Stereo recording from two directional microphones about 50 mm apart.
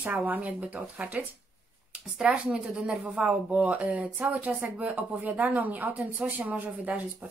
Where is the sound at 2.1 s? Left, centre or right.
Right.